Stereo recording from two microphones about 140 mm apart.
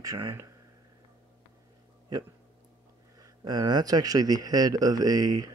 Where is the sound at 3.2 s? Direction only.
30° right (ahead or behind).